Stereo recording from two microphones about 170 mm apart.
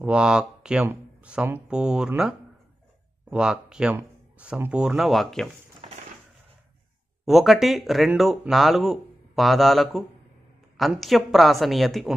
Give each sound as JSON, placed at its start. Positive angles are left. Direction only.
{"t": 0.0, "sound": "speech", "side_deg": -5}
{"t": 5.8, "sound": "crushing", "side_deg": -35}
{"t": 7.2, "sound": "speech", "side_deg": 0}